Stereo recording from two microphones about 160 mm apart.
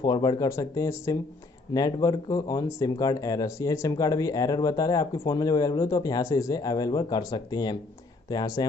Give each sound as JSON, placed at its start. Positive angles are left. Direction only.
{"t": 0.0, "sound": "speech", "side_deg": 25}